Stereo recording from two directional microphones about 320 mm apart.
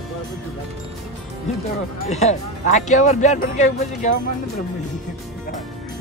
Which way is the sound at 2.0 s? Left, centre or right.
Left.